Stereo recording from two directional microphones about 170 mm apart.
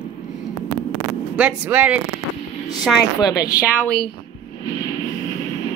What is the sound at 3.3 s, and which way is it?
Speech, 65° left (ahead or behind).